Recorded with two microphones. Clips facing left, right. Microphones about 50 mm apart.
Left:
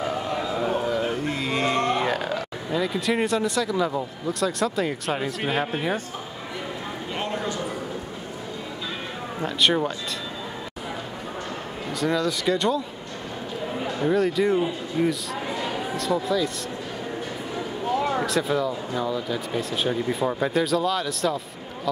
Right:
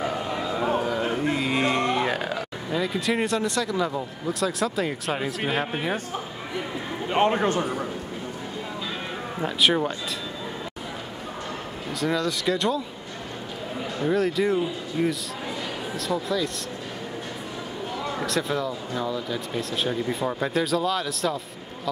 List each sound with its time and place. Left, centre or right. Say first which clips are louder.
0.0 s a sound: left 1 dB; centre
0.9 s speech: right 1 dB; centre
7.1 s a man's voice: right 8 dB; right
9.4 s speech: even; centre
11.9 s speech: left 1 dB; centre
13.8 s speech: left 1 dB; centre
18.2 s speech: left 2 dB; centre